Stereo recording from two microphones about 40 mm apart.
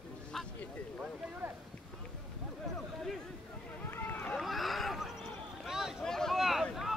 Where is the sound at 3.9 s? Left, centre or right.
Left.